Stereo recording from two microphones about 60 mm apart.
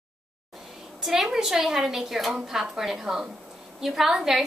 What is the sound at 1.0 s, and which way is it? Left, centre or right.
A woman's voice, centre.